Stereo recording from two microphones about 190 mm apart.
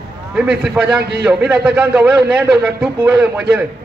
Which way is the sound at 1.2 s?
5° right (ahead or behind).